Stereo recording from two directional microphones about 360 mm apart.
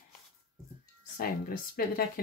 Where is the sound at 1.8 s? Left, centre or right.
Left.